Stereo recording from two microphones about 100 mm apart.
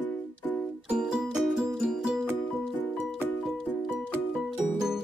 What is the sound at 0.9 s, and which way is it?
Music, 5° right (ahead or behind).